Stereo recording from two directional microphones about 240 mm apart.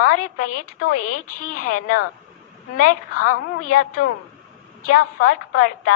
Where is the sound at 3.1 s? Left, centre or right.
Left.